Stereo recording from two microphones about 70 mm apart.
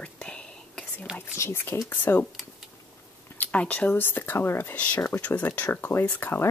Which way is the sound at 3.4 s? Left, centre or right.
Centre.